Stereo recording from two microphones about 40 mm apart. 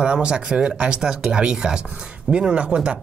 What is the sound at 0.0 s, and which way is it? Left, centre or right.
Speech, right.